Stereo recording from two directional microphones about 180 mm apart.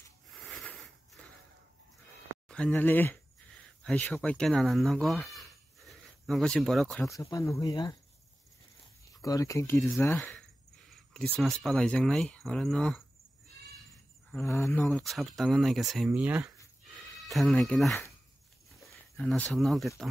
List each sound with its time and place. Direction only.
0.3 s a sound: centre (ahead or behind)
2.4 s speech: 5° left (ahead or behind)
7.1 s speech: 20° left (ahead or behind)
9.1 s speech: 20° left (ahead or behind)
10.9 s speech: 5° left (ahead or behind)
14.3 s speech: 15° left (ahead or behind)
14.9 s speech: centre (ahead or behind)